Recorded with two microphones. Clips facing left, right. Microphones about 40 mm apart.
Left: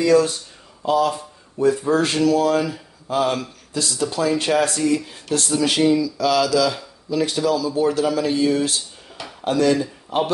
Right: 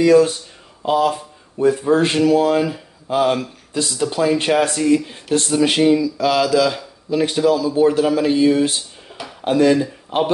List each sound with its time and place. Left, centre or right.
0.0 s a man's voice: right